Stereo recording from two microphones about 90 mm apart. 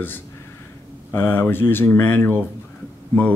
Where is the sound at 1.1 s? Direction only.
20° left (ahead or behind).